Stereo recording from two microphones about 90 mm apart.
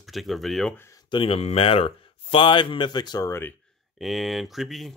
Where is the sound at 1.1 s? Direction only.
90° left; by 3.3 s 55° left (ahead or behind).